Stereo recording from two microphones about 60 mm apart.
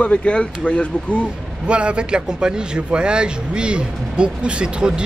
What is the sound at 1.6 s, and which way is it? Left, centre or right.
Speech, centre.